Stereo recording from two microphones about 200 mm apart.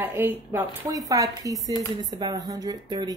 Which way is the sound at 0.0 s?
10° right (ahead or behind).